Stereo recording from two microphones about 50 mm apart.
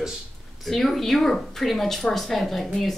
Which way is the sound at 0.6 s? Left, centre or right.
Centre.